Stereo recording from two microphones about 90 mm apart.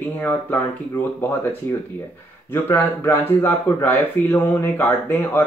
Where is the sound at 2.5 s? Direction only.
20° left (ahead or behind).